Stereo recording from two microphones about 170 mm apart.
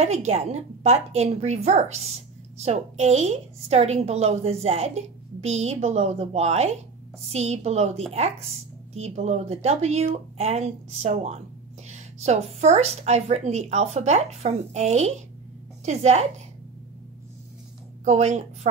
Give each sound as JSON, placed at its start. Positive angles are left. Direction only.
{"t": 0.0, "sound": "a woman's voice", "side_deg": -40}
{"t": 18.0, "sound": "a woman's voice", "side_deg": -40}